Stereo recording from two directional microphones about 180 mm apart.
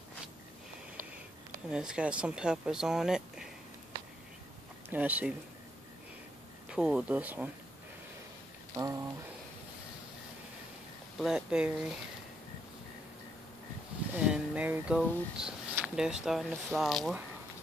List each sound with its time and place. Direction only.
1.7 s speech: 5° right (ahead or behind)
4.8 s speech: 10° right (ahead or behind)
6.7 s speech: 5° right (ahead or behind)
8.7 s speech: 20° right (ahead or behind)
11.1 s speech: 5° right (ahead or behind)
14.1 s speech: 5° right (ahead or behind)